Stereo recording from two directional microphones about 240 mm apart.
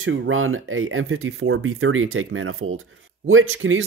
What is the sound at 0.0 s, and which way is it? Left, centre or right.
Speech, right.